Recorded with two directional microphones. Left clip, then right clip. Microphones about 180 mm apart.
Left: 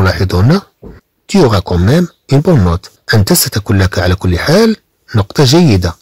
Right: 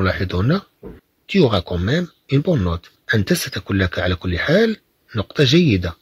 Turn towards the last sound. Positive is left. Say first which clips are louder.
# left 7 dB
turn(degrees=45)  # may be behind; listen again after turning